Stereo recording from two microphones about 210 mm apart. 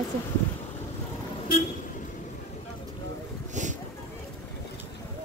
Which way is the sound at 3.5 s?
35° right (ahead or behind).